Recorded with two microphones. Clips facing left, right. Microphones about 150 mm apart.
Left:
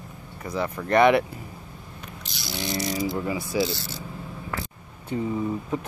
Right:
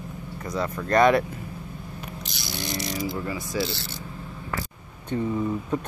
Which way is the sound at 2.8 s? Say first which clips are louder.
Left 3 dB; 15° left (ahead or behind).